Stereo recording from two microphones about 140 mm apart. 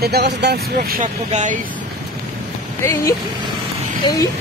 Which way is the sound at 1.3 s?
55° right (ahead or behind).